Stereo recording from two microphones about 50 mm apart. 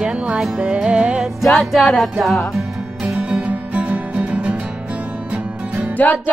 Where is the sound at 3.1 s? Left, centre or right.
Right.